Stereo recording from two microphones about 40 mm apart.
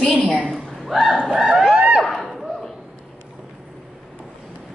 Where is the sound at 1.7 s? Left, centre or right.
Right.